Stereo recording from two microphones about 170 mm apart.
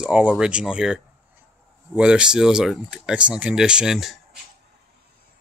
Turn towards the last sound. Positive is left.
turn(degrees=0)  # may be behind; listen again after turning